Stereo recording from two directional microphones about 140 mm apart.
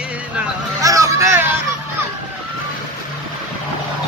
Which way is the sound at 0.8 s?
25° right (ahead or behind).